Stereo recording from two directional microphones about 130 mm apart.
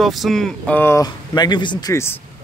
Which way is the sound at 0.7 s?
20° left (ahead or behind).